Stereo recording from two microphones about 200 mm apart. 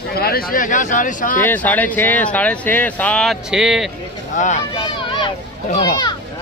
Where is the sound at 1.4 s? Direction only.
10° left (ahead or behind).